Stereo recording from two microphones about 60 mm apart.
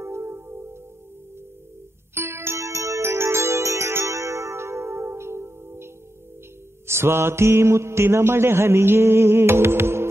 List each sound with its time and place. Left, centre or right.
0.0 s music: right
2.1 s music: right
6.9 s mantra: right